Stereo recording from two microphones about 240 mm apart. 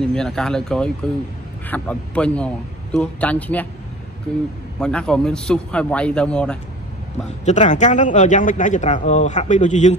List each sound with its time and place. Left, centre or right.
0.1 s speech: centre
4.7 s speech: centre
7.4 s speech: left